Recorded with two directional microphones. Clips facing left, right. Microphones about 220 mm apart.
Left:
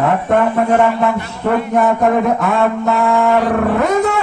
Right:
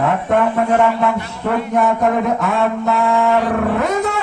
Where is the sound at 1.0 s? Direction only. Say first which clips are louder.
Left 2 dB; 50° left (ahead or behind).